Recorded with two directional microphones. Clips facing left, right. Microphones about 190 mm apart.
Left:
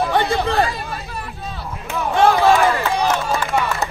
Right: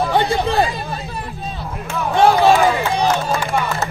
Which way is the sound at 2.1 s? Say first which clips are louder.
Right 2 dB; 15° right (ahead or behind).